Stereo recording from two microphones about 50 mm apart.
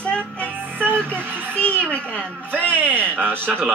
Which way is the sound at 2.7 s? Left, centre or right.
Right.